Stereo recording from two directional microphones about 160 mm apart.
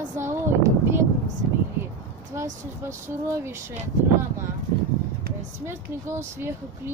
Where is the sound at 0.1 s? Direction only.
15° right (ahead or behind).